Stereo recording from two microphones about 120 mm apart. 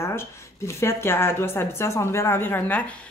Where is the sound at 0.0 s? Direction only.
20° left (ahead or behind).